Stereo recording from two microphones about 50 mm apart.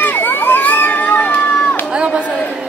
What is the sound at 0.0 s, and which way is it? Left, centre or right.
Crowd, left.